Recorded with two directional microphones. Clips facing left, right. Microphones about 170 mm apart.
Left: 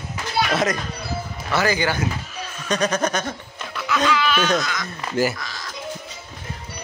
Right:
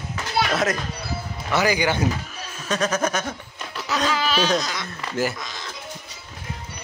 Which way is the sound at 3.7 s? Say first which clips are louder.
Left 3 dB; 40° right (ahead or behind).